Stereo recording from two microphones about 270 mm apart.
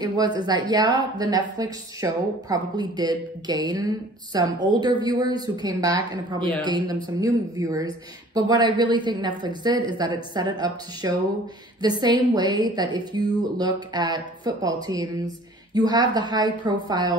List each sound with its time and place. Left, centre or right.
0.0 s a woman's voice: centre